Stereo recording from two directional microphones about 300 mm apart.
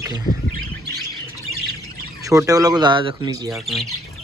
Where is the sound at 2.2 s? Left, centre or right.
Centre.